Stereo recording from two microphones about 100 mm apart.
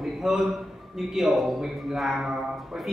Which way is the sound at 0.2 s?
Centre (ahead or behind).